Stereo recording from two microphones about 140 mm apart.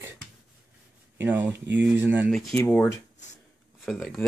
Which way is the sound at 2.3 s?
5° left (ahead or behind).